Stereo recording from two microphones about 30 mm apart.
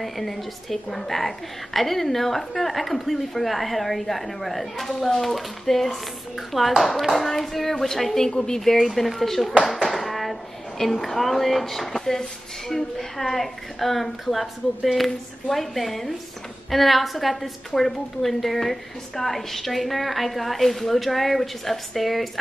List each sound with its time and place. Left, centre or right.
0.0 s a woman's voice: centre
9.7 s a sound: centre
10.8 s a woman's voice: centre
15.0 s a woman's voice: centre